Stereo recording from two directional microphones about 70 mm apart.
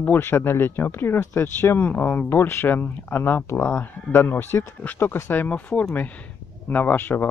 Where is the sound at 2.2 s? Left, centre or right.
Left.